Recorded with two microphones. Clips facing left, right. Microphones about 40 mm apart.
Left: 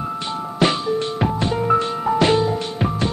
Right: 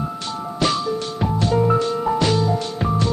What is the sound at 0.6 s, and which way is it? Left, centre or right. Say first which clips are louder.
Music: left 2 dB; left.